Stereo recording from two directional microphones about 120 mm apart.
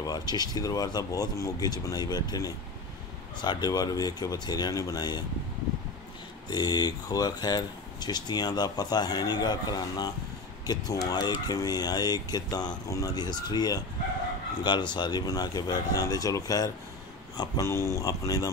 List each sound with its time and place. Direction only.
0.0 s speech: 35° left (ahead or behind)
6.5 s speech: 35° left (ahead or behind)